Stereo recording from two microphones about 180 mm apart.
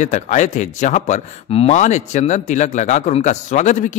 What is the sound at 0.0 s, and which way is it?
A man's voice, 40° left (ahead or behind).